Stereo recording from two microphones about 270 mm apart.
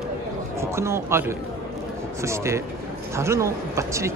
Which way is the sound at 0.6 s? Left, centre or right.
Centre.